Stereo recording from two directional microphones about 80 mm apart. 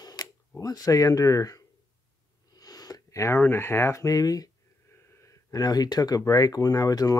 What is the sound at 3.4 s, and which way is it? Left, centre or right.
Speech, left.